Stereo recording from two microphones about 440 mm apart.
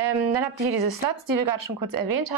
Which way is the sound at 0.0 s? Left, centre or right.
Right.